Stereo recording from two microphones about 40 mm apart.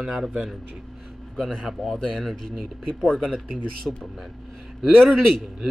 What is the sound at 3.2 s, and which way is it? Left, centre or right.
Speech, centre.